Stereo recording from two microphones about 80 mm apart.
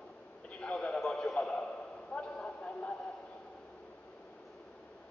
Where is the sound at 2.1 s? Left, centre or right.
Centre.